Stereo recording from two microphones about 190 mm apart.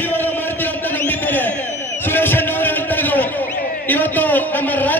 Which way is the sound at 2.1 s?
10° left (ahead or behind).